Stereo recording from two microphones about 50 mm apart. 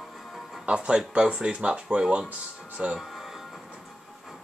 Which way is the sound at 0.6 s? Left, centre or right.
Right.